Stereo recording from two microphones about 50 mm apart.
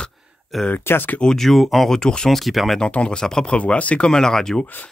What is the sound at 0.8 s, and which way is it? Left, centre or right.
Speech, left.